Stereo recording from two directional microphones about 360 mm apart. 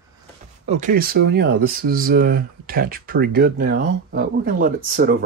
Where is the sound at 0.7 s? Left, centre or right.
Right.